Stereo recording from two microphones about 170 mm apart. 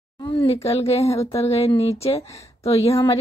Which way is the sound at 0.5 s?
35° left (ahead or behind).